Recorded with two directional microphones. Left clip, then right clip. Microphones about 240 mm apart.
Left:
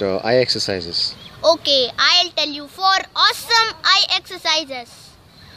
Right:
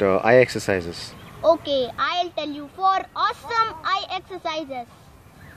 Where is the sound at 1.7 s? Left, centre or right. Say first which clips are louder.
Left 8 dB; centre.